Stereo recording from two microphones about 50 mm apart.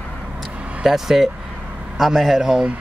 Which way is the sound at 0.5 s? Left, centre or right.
Right.